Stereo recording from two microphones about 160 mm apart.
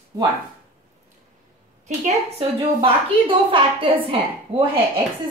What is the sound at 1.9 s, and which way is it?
A woman's voice, 35° right (ahead or behind).